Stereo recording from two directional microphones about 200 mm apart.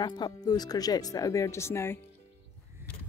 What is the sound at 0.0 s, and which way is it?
Speech, 20° left (ahead or behind).